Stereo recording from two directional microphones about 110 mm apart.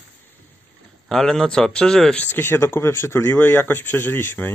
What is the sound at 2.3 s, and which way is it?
Speech, 20° left (ahead or behind).